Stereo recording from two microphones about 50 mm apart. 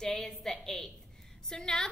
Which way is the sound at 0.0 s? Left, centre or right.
Centre.